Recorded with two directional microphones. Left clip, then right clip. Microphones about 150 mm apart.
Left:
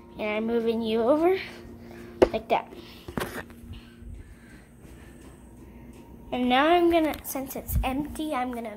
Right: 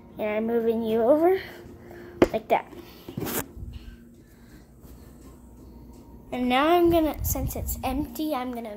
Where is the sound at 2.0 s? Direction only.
5° right (ahead or behind).